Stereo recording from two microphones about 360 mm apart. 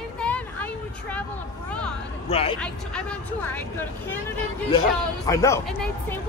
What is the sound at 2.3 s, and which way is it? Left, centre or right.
Speech, centre.